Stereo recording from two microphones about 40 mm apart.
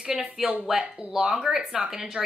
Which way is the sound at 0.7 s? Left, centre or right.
Centre.